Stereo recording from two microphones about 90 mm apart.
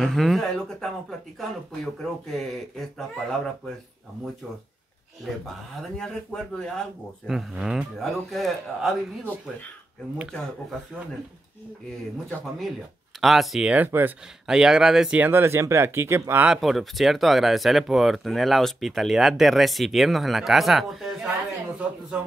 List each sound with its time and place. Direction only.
0.0 s speech: centre (ahead or behind)
5.8 s a man's voice: 5° left (ahead or behind)
7.2 s speech: 5° right (ahead or behind)
13.2 s speech: centre (ahead or behind)
13.7 s speech: 20° right (ahead or behind)
14.4 s speech: 5° right (ahead or behind)
15.1 s speech: 20° right (ahead or behind)
16.4 s speech: centre (ahead or behind)
22.1 s music: 10° right (ahead or behind)